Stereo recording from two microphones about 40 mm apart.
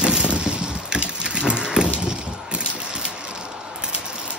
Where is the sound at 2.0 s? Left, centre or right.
Right.